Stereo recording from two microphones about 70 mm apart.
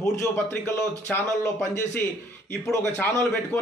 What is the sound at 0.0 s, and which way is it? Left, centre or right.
Speech, left.